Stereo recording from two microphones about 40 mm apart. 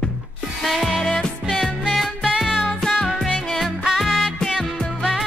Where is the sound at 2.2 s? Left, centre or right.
Centre.